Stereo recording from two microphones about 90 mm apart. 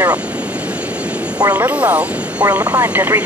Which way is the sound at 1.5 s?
20° right (ahead or behind).